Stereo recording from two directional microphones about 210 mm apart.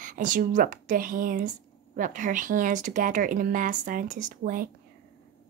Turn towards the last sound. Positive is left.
turn(degrees=-40)  # may be behind; listen again after turning